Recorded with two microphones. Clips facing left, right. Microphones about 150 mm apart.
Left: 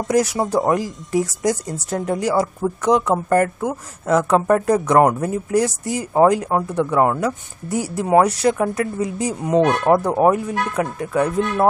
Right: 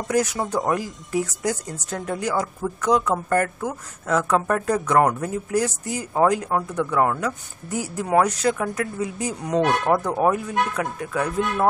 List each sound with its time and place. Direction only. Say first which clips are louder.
0.1 s speech: left 4 dB; 35° left (ahead or behind)